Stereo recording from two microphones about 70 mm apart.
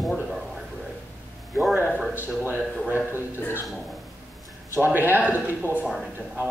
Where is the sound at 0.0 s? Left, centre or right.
Centre.